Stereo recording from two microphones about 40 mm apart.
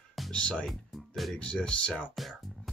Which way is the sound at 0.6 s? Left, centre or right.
Centre.